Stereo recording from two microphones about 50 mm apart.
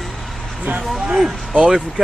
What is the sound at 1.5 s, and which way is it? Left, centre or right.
Speech, centre.